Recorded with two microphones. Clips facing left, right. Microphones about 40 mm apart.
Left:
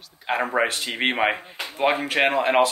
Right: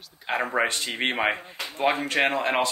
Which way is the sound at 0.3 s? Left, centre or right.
Centre.